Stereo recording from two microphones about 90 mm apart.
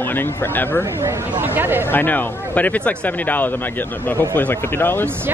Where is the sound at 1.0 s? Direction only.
20° right (ahead or behind).